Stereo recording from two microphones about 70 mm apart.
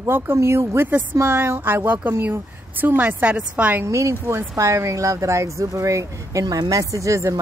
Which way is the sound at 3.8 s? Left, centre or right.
Right.